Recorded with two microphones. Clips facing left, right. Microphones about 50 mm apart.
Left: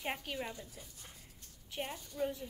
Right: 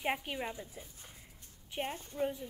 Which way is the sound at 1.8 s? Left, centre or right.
Right.